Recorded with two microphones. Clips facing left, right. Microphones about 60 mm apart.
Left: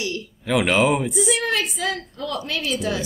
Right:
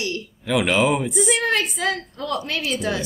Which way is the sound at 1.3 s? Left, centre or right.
Right.